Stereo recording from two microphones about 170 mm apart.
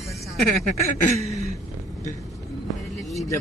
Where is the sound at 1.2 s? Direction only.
40° right (ahead or behind).